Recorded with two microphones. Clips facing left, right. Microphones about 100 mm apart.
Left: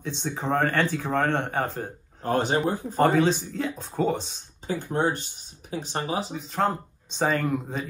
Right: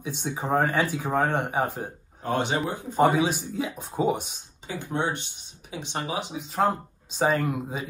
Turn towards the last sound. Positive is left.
turn(degrees=-5)  # may be behind; listen again after turning